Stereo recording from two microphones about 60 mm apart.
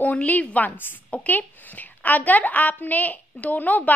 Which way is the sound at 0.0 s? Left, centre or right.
Left.